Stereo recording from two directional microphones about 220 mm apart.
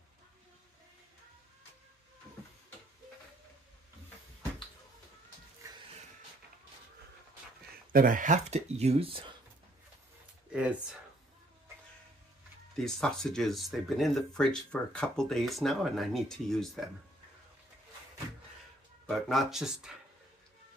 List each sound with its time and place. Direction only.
5.6 s music: 15° right (ahead or behind)
7.9 s speech: 40° right (ahead or behind)
10.5 s speech: 5° right (ahead or behind)
12.7 s speech: centre (ahead or behind)
19.0 s speech: centre (ahead or behind)